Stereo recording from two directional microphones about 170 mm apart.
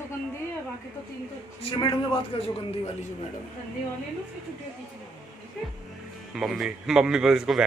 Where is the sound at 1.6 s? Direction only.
30° left (ahead or behind).